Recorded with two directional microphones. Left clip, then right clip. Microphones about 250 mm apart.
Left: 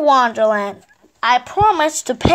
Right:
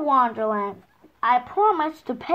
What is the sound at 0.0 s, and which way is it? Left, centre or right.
A woman's voice, left.